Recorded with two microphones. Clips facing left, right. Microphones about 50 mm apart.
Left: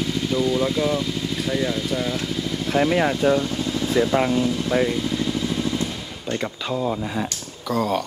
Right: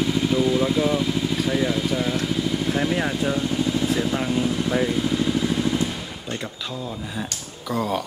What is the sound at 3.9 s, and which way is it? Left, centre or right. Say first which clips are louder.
Speech: left 3 dB; centre.